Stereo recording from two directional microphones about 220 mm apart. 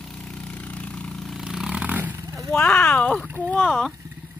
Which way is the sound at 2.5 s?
5° left (ahead or behind).